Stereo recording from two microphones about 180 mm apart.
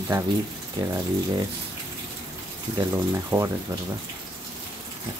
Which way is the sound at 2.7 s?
15° right (ahead or behind).